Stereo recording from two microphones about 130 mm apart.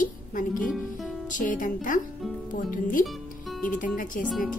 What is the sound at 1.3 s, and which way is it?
Speech, 90° left.